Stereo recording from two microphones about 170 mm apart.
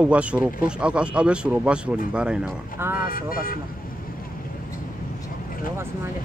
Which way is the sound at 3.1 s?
55° left (ahead or behind).